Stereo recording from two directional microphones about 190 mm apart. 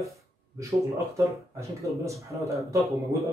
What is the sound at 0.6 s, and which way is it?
A man's voice, 15° right (ahead or behind).